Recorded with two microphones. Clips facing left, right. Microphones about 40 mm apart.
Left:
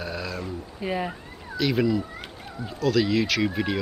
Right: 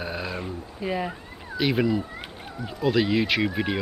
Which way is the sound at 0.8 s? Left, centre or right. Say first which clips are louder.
Even; centre.